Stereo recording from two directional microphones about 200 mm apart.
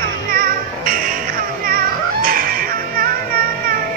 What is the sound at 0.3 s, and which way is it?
Music, 45° right (ahead or behind).